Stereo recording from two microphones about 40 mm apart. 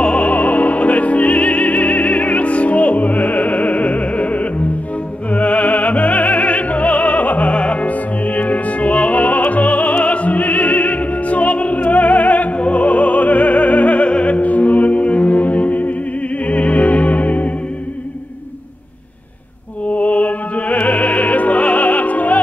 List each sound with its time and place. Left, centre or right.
0.0 s opera: left
5.3 s music: left
19.9 s music: left